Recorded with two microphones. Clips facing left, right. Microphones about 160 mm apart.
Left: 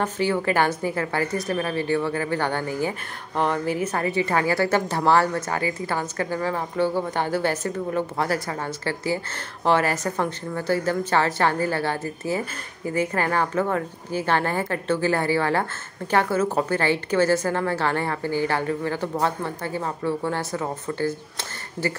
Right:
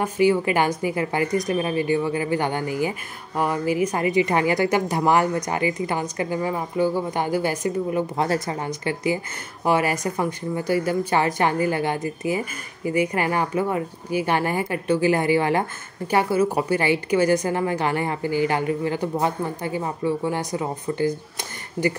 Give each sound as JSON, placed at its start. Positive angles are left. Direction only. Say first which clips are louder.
{"t": 0.0, "sound": "speech", "louder": "right 4 dB", "side_deg": -15}